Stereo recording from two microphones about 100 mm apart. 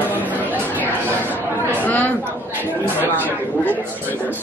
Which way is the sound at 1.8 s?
20° left (ahead or behind).